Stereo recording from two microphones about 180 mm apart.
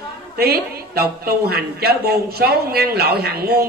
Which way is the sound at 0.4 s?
60° right (ahead or behind).